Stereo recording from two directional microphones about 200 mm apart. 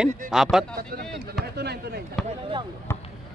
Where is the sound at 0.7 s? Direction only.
50° right (ahead or behind).